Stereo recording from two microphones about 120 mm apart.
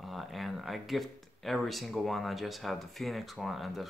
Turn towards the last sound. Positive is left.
turn(degrees=0)  # may be behind; listen again after turning